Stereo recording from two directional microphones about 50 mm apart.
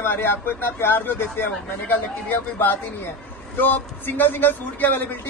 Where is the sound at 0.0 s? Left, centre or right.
Left.